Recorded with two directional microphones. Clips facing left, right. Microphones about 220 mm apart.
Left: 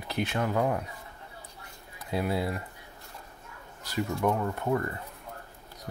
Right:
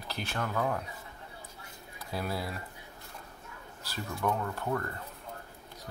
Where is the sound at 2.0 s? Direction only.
20° left (ahead or behind).